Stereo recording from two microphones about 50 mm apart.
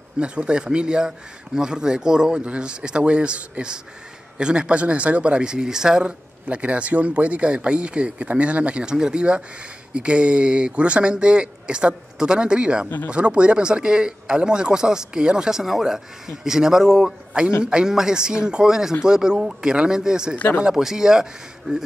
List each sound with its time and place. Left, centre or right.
0.2 s speech: right
6.4 s speech: right